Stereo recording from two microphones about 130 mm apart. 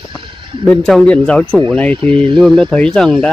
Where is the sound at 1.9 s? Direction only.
40° right (ahead or behind).